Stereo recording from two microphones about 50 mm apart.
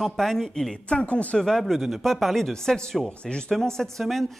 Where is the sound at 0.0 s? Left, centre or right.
Centre.